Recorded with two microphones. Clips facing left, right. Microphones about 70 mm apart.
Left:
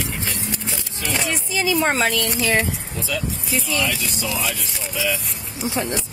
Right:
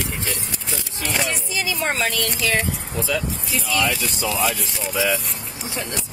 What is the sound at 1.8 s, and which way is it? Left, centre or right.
Speech, centre.